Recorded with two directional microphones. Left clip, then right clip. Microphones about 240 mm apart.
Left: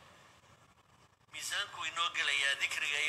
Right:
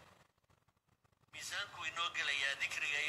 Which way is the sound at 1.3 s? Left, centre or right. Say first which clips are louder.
Left 5 dB; left.